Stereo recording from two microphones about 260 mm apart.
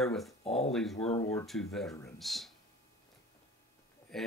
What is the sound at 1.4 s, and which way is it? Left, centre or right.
Speech, centre.